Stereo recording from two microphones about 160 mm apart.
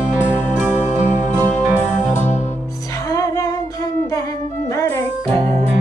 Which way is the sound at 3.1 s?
25° left (ahead or behind).